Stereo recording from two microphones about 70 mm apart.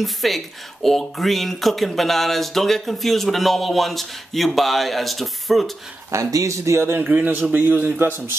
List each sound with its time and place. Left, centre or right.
0.0 s speech: centre
6.1 s speech: right
7.0 s a man's voice: right